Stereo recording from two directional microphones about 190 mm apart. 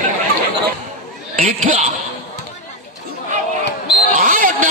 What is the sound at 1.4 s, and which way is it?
Speech, 45° right (ahead or behind).